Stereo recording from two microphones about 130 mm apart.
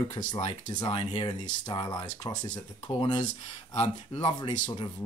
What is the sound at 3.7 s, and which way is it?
Speech, 50° left (ahead or behind).